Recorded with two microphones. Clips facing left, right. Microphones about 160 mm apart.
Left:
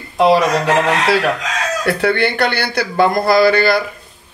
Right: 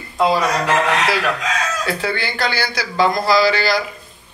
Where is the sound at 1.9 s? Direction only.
65° left (ahead or behind).